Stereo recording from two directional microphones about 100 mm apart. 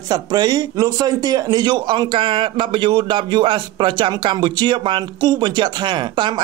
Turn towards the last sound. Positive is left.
turn(degrees=-50)  # may be behind; listen again after turning